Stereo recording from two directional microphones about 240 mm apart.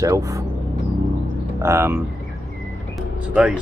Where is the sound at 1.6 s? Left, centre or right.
Centre.